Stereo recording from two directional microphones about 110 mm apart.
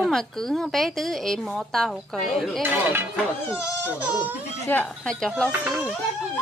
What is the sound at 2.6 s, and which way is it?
Speech, 15° right (ahead or behind).